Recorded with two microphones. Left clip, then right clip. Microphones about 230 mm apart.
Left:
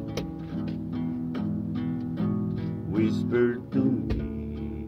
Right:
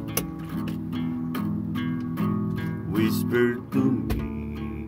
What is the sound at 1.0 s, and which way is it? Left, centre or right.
Music, right.